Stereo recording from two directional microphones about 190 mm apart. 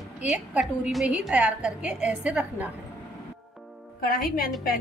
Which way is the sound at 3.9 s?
50° left (ahead or behind).